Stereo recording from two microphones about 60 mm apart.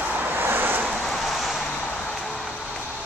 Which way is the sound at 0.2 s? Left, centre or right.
Right.